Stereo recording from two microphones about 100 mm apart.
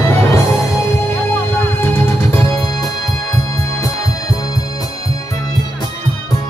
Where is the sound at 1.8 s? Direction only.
25° left (ahead or behind).